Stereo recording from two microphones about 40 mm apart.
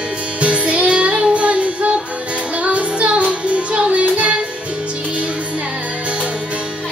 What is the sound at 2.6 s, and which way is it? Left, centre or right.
Music, right.